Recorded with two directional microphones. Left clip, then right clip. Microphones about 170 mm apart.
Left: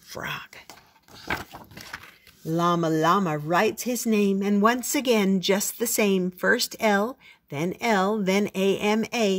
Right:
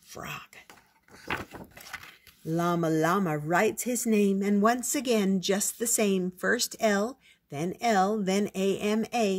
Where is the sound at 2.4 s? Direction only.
Centre (ahead or behind).